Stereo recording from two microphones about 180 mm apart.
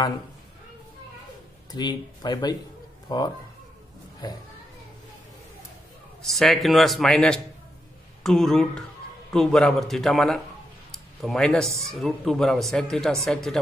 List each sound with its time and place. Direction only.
1.7 s speech: 25° left (ahead or behind)
6.2 s a man's voice: centre (ahead or behind)